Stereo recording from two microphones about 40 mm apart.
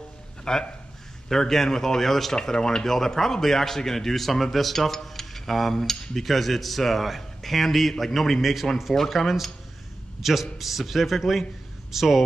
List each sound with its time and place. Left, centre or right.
0.5 s speech: centre
2.3 s a man's voice: centre